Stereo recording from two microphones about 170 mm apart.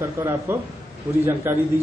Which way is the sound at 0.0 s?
15° right (ahead or behind).